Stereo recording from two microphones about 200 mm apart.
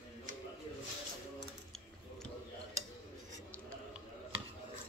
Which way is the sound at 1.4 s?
Centre (ahead or behind).